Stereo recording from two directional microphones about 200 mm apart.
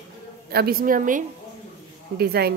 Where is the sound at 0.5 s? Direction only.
50° right (ahead or behind).